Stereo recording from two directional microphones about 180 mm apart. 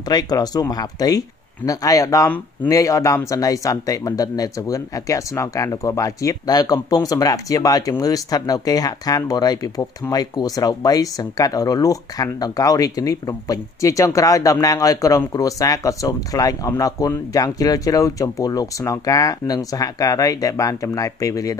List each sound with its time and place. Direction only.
0.1 s speech: 20° left (ahead or behind)